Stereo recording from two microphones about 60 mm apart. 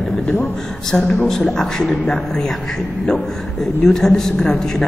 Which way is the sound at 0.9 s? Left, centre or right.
Left.